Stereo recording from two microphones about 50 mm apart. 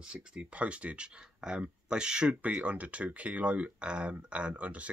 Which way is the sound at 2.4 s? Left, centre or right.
Right.